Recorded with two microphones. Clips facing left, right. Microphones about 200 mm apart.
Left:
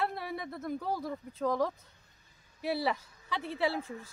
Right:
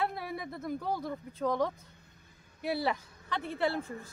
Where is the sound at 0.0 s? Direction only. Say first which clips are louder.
Even; centre (ahead or behind).